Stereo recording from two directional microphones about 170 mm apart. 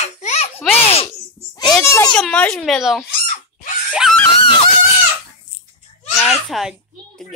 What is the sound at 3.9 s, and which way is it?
Screaming, 5° right (ahead or behind).